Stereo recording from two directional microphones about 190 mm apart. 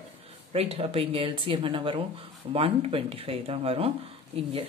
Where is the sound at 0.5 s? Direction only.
30° right (ahead or behind).